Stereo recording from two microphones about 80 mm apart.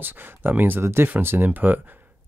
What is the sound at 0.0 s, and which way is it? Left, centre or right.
Speech, right.